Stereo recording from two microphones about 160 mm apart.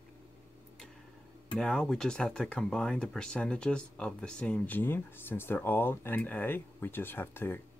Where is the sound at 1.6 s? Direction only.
5° left (ahead or behind).